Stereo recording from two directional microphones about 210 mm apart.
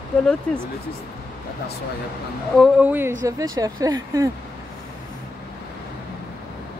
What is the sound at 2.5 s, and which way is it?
Speech, 5° right (ahead or behind).